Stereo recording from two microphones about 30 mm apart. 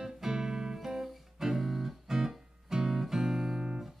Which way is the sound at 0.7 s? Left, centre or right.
Centre.